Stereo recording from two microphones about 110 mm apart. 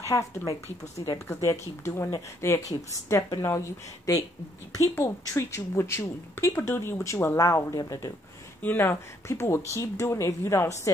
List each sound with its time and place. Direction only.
0.0 s a woman's voice: 25° left (ahead or behind)
1.0 s speech: 40° left (ahead or behind)
1.3 s a woman's voice: 25° left (ahead or behind)
8.6 s a woman's voice: 20° left (ahead or behind)